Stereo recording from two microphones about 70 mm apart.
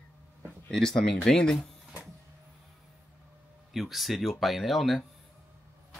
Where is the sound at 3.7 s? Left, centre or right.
Centre.